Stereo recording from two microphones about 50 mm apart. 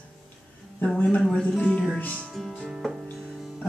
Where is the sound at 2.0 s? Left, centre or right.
Left.